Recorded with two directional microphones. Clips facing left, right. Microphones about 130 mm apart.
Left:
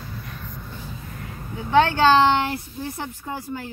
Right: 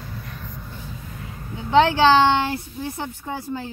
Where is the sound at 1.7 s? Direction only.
20° right (ahead or behind).